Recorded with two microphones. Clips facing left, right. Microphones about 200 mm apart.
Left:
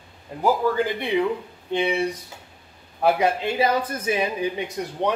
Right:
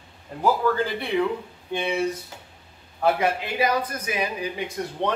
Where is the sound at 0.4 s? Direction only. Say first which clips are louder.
Left 1 dB; 15° left (ahead or behind).